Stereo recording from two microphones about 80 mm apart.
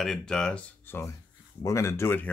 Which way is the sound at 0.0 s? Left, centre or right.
Centre.